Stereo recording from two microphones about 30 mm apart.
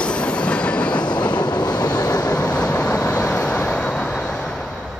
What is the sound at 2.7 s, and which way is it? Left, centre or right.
Vehicle, left.